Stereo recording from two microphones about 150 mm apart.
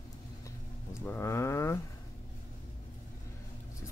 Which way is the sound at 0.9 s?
15° left (ahead or behind).